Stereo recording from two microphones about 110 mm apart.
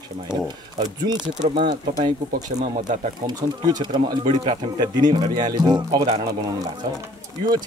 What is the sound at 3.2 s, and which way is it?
Speech, 40° right (ahead or behind).